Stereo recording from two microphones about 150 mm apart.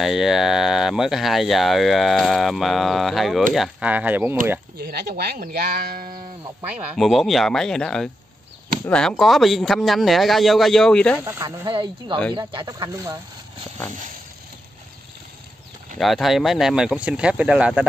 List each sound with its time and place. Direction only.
0.0 s speech: centre (ahead or behind)
4.7 s speech: 90° right; by 6.1 s 75° right (ahead or behind)
7.0 s speech: centre (ahead or behind)
11.1 s speech: 20° right (ahead or behind)
16.0 s speech: centre (ahead or behind)